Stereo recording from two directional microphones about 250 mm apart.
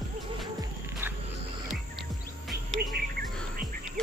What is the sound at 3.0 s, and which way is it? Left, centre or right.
Cricket, right.